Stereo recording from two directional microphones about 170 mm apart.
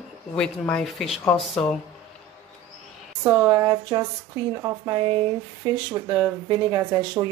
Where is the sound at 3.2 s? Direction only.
15° right (ahead or behind).